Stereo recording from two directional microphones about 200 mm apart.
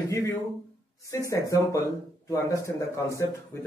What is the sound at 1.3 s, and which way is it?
A man's voice, 15° left (ahead or behind).